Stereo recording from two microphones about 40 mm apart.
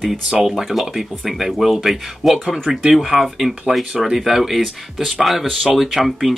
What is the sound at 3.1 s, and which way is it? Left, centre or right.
Speech, right.